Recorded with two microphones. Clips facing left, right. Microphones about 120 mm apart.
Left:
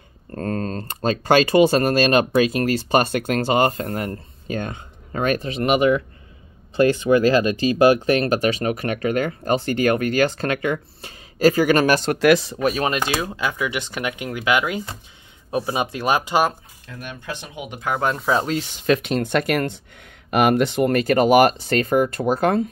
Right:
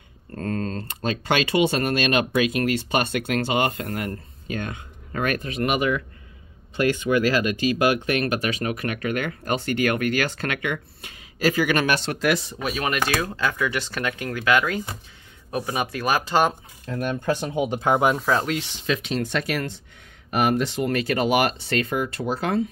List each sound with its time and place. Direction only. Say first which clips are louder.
0.3 s speech: left 2 dB; 40° left (ahead or behind)
12.2 s speech: left 7 dB; 75° left (ahead or behind)
12.8 s speech: left 2 dB; 25° left (ahead or behind)
16.8 s speech: right 9 dB; 45° right (ahead or behind)
17.9 s speech: right 1 dB; 10° right (ahead or behind)
18.6 s speech: left 6 dB; 50° left (ahead or behind)